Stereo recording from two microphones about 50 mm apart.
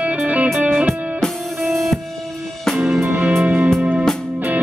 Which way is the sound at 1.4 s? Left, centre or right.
Centre.